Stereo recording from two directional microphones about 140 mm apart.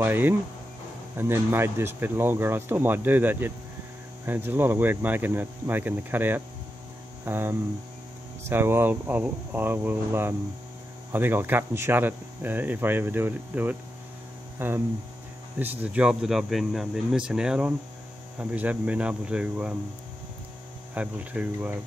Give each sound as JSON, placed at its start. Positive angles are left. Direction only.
{"t": 0.0, "sound": "speech", "side_deg": -15}
{"t": 20.9, "sound": "speech", "side_deg": -10}